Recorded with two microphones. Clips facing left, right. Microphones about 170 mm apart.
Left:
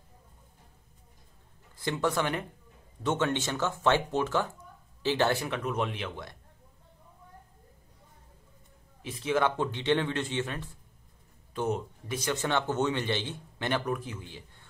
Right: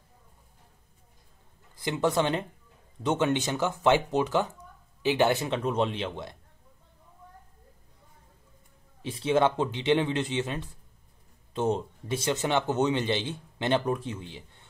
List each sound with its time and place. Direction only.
1.8 s a man's voice: 20° right (ahead or behind)
9.0 s a man's voice: 30° right (ahead or behind)